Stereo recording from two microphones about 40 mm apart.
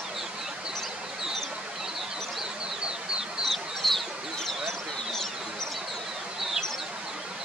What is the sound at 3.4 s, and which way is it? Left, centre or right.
Chicken, centre.